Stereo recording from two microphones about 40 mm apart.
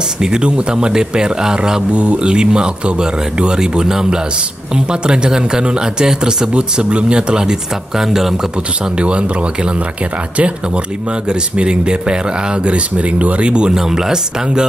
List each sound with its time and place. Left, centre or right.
0.2 s speech: right
1.9 s speech: right
8.0 s speech: centre
8.9 s speech: right
11.2 s speech: right
13.7 s speech: centre